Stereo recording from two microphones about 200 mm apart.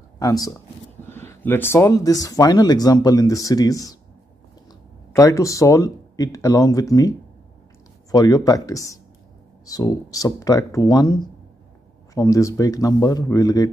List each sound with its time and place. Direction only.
0.2 s speech: 15° left (ahead or behind)
5.1 s speech: 15° left (ahead or behind)